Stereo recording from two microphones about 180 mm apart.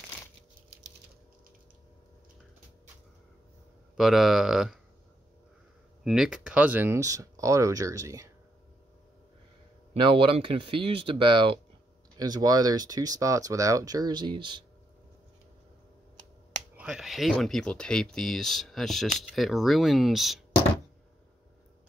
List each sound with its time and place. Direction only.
3.9 s speech: centre (ahead or behind)
6.0 s speech: centre (ahead or behind)
9.9 s speech: 25° right (ahead or behind)
16.7 s speech: 5° right (ahead or behind)